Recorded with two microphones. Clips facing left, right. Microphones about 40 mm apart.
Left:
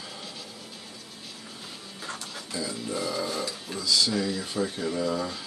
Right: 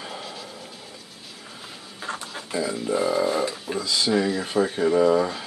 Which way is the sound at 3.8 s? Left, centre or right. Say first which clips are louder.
Right 3 dB; right.